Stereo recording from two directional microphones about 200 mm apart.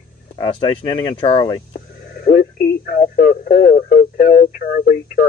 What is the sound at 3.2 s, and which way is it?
Speech, 45° left (ahead or behind).